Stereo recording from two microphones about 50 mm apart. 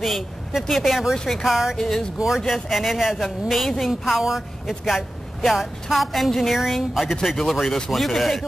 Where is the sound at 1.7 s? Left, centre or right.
Centre.